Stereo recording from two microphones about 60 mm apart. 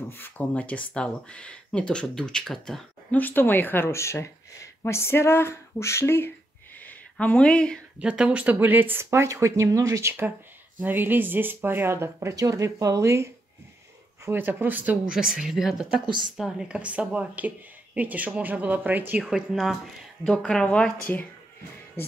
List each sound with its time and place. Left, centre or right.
0.6 s speech: left; by 2.8 s centre
3.1 s speech: left
3.9 s speech: left
6.8 s a sound: left
8.0 s speech: centre
9.1 s speech: right
10.8 s speech: right
12.4 s speech: right
14.3 s speech: right
15.0 s speech: centre
16.6 s speech: centre
19.5 s speech: centre